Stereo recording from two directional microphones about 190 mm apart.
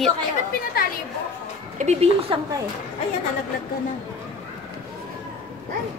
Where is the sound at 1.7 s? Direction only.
35° right (ahead or behind).